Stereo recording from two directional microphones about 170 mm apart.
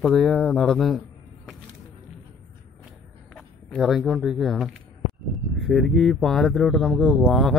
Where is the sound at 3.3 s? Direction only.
Centre (ahead or behind).